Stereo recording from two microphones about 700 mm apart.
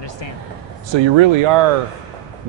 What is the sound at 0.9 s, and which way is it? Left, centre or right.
Speech, right.